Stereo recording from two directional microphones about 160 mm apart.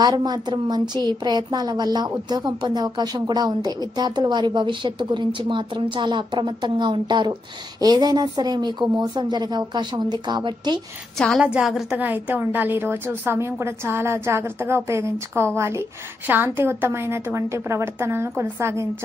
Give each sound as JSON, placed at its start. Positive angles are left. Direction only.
{"t": 0.0, "sound": "a woman's voice", "side_deg": -25}
{"t": 11.1, "sound": "a woman's voice", "side_deg": 5}